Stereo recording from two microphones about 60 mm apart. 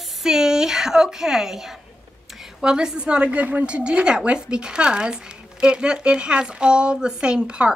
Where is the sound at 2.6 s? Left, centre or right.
Centre.